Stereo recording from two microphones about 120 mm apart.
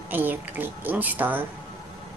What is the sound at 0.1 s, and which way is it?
A woman's voice, 15° right (ahead or behind).